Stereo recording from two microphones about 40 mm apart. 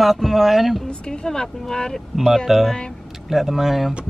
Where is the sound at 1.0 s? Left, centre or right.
Centre.